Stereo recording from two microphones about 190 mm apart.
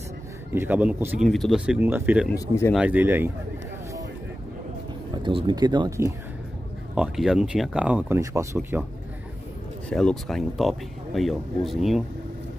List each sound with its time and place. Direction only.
0.6 s speech: 10° right (ahead or behind)
2.3 s speech: 15° left (ahead or behind)
2.7 s speech: 5° right (ahead or behind)
5.1 s speech: 25° right (ahead or behind)
7.0 s speech: 5° right (ahead or behind)
9.8 s speech: 5° left (ahead or behind)